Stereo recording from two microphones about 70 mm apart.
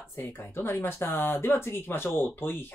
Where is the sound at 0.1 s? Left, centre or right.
Left.